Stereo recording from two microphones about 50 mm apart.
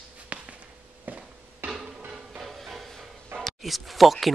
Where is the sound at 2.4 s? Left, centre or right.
Centre.